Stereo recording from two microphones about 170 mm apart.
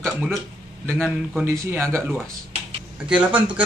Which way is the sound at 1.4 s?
15° right (ahead or behind).